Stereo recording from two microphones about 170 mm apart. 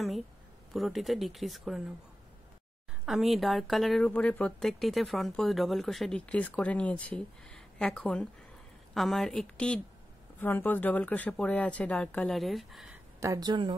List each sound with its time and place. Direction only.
0.7 s speech: centre (ahead or behind)
3.1 s speech: centre (ahead or behind)
13.2 s speech: 20° right (ahead or behind)